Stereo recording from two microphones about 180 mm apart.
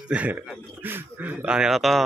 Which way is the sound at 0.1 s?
5° right (ahead or behind).